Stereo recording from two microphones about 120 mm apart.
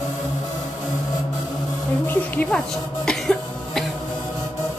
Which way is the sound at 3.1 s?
Centre (ahead or behind).